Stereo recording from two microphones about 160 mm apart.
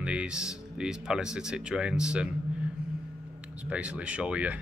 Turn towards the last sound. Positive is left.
turn(degrees=-10)  # may be behind; listen again after turning